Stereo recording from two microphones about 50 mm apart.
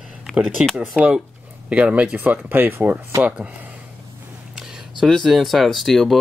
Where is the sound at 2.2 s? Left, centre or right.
Right.